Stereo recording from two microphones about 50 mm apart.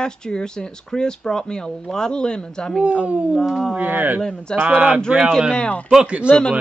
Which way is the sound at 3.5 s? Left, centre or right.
Centre.